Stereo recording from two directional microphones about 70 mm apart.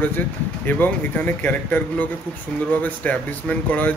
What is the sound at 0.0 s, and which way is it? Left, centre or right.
Speech, left.